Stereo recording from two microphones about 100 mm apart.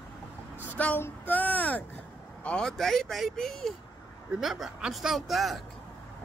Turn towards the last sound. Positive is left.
turn(degrees=0)  # may be behind; listen again after turning